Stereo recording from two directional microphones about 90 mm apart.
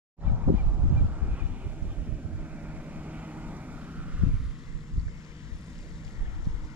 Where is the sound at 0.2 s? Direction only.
20° right (ahead or behind).